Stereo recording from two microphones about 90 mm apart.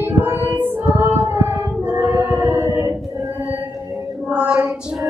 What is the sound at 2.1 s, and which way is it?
Music, 25° right (ahead or behind).